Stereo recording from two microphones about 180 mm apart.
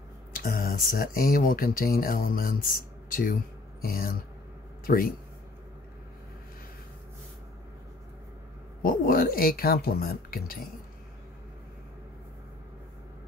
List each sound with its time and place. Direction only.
0.3 s speech: 55° left (ahead or behind)
8.8 s speech: 55° left (ahead or behind)